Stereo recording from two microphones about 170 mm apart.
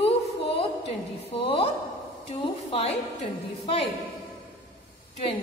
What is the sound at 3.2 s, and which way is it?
Speech, 35° left (ahead or behind).